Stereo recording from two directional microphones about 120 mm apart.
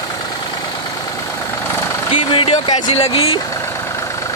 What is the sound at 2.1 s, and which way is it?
Speech, 50° left (ahead or behind).